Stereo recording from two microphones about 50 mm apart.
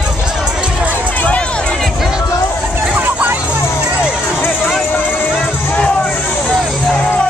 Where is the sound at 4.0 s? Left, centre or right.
Left.